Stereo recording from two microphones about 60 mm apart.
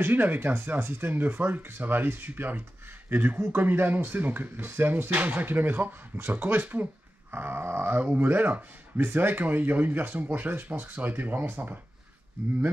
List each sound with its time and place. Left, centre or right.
0.0 s speech: right
8.0 s speech: right